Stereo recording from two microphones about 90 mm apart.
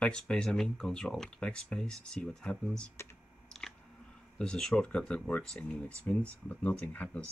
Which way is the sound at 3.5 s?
10° left (ahead or behind).